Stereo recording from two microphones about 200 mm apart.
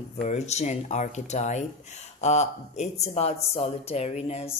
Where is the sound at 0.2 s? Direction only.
35° left (ahead or behind).